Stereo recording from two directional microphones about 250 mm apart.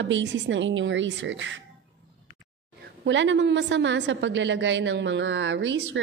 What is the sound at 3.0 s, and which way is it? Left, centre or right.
A woman's voice, right.